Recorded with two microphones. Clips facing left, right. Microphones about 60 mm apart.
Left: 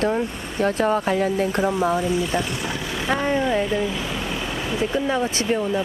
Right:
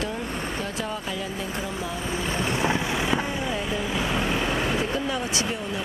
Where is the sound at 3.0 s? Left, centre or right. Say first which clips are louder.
Left 5 dB; left.